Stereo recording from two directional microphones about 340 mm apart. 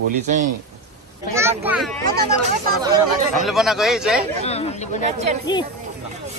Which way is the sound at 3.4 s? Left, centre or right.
Centre.